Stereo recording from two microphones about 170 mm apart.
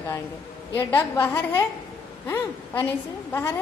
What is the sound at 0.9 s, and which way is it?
A woman's voice, 10° left (ahead or behind).